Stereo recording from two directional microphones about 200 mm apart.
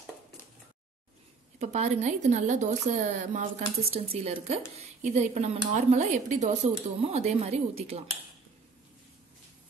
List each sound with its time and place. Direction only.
1.6 s a woman's voice: 35° right (ahead or behind)